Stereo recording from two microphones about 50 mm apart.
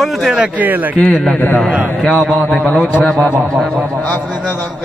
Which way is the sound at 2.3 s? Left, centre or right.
Left.